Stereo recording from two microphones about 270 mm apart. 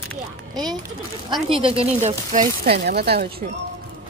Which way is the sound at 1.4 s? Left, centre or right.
Centre.